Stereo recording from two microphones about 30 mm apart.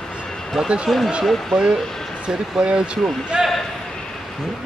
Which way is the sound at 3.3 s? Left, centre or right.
Right.